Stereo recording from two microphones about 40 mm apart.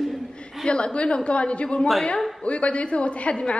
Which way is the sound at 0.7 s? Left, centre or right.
Left.